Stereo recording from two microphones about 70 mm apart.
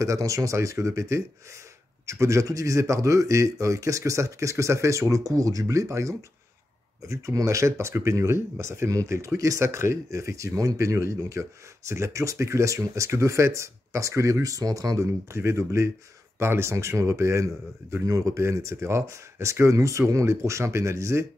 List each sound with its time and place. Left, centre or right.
0.0 s speech: right
15.3 s speech: right